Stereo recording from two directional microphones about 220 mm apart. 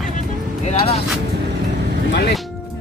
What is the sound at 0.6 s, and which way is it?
Speech, 30° left (ahead or behind).